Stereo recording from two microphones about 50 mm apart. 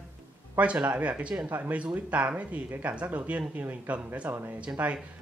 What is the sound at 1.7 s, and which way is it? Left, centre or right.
Speech, right.